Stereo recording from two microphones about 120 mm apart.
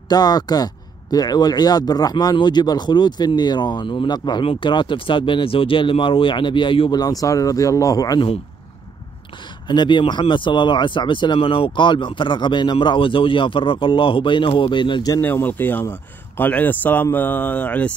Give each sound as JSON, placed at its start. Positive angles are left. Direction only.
{"t": 0.1, "sound": "speech", "side_deg": 35}
{"t": 9.7, "sound": "speech", "side_deg": 40}
{"t": 15.1, "sound": "speech", "side_deg": 20}